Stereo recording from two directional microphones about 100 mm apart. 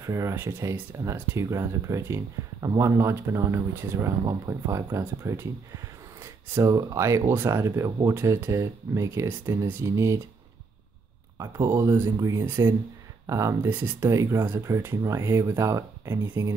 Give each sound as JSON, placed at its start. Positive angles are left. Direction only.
{"t": 0.0, "sound": "speech", "side_deg": -30}
{"t": 11.3, "sound": "speech", "side_deg": -35}
{"t": 13.7, "sound": "speech", "side_deg": -20}
{"t": 13.9, "sound": "speech", "side_deg": -30}